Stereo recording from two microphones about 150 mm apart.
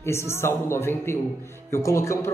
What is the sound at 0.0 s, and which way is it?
Speech, 15° left (ahead or behind).